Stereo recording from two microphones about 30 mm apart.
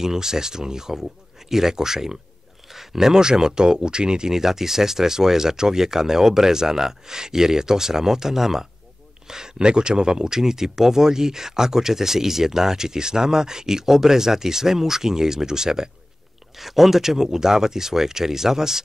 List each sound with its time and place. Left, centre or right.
0.0 s speech: centre
4.3 s speech: centre
9.3 s speech: right
16.5 s speech: centre